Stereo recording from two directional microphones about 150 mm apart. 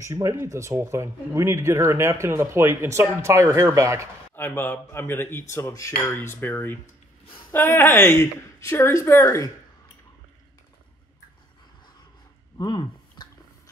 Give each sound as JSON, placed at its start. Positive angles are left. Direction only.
{"t": 0.0, "sound": "speech", "side_deg": -20}
{"t": 4.4, "sound": "speech", "side_deg": 15}
{"t": 12.5, "sound": "a sound", "side_deg": 30}